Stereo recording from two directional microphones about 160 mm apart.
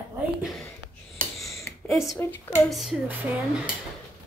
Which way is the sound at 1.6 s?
15° left (ahead or behind).